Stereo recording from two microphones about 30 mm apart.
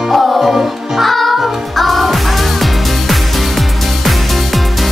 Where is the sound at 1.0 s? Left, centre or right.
Centre.